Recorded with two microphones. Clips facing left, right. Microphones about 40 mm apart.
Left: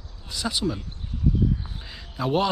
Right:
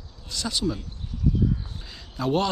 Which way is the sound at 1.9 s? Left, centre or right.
Centre.